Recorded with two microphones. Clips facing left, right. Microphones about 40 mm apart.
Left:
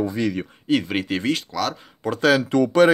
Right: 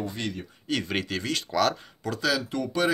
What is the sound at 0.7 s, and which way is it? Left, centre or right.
Speech, centre.